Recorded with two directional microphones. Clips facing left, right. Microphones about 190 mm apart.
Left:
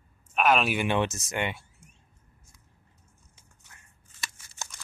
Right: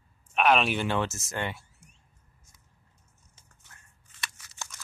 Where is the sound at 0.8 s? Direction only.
20° left (ahead or behind).